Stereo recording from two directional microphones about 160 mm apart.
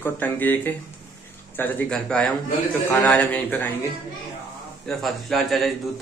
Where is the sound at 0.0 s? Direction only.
10° left (ahead or behind).